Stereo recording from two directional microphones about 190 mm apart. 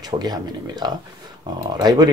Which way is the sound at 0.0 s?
20° right (ahead or behind).